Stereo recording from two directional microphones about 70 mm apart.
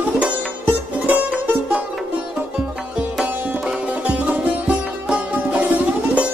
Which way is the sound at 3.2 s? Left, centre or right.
Right.